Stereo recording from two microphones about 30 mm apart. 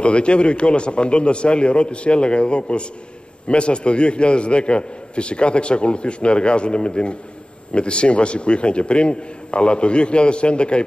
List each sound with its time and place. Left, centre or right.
0.0 s a man's voice: left